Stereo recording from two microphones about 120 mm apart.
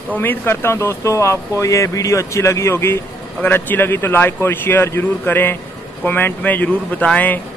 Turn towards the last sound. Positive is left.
turn(degrees=10)  # may be behind; listen again after turning